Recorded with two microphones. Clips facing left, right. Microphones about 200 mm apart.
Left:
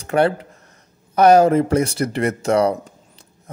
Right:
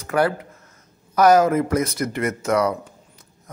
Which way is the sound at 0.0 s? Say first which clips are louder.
Left 3 dB; 30° left (ahead or behind).